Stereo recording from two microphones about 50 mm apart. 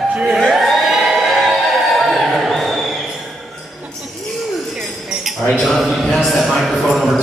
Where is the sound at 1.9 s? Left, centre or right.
Centre.